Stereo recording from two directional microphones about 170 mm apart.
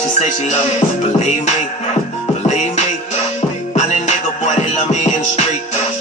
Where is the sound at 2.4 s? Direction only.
45° left (ahead or behind).